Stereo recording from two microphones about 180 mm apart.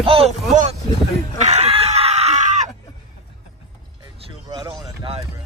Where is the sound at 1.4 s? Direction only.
40° right (ahead or behind).